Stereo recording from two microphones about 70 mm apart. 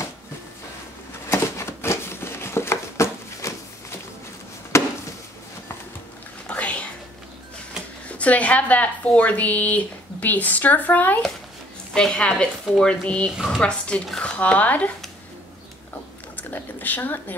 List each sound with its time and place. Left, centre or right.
1.3 s a sound: left
4.7 s chop: left
6.4 s a sound: centre
8.1 s speech: centre
11.9 s speech: centre
16.3 s speech: left